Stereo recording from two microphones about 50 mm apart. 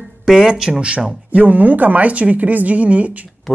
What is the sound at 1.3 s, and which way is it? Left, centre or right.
Speech, right.